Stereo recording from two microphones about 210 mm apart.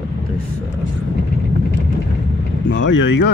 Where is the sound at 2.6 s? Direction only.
60° left (ahead or behind).